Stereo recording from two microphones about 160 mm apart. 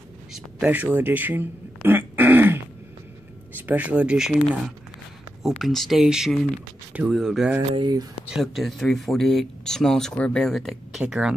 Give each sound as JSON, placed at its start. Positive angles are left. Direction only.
{"t": 0.3, "sound": "a sound", "side_deg": -10}
{"t": 3.6, "sound": "speech", "side_deg": -10}
{"t": 7.7, "sound": "speech", "side_deg": -25}
{"t": 8.3, "sound": "speech", "side_deg": 0}